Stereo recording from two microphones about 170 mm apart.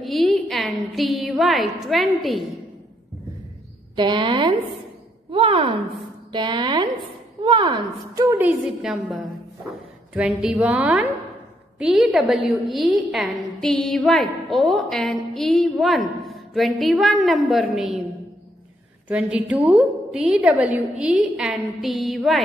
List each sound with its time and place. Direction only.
0.0 s a woman's voice: centre (ahead or behind)
3.9 s a woman's voice: 30° right (ahead or behind); by 22.4 s centre (ahead or behind)